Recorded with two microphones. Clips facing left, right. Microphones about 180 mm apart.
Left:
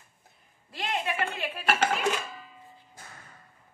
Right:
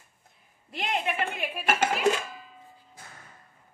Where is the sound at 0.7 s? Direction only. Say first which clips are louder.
Right 2 dB; 20° right (ahead or behind).